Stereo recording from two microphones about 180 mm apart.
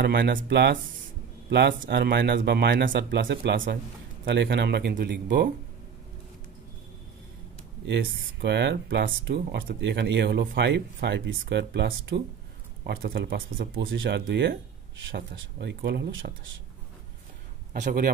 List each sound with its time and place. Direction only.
0.0 s speech: 70° right (ahead or behind)
7.8 s speech: 70° right (ahead or behind); by 16.5 s 90° right
17.7 s speech: 45° right (ahead or behind)